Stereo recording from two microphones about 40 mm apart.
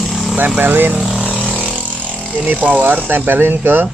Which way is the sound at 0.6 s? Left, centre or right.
Right.